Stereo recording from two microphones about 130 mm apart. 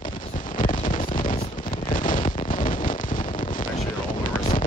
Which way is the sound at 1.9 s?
90° left.